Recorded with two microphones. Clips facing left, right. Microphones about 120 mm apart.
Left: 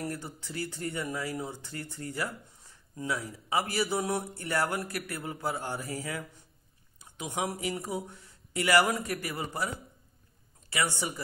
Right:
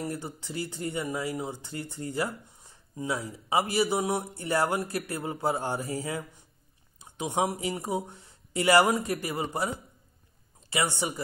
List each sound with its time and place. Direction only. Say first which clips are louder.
0.0 s speech: right 2 dB; 20° right (ahead or behind)
10.7 s speech: right 2 dB; 20° right (ahead or behind)